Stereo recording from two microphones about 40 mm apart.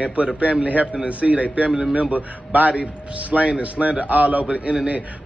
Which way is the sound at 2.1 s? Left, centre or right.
Right.